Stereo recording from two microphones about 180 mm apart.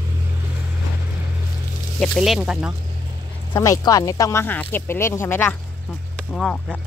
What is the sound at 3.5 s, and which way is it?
Speech, 20° left (ahead or behind).